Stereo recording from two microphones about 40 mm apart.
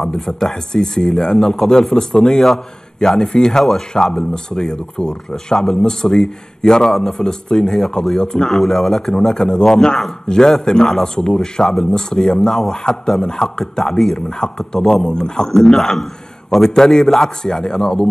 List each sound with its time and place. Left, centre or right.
0.0 s a man's voice: centre
14.1 s a man's voice: centre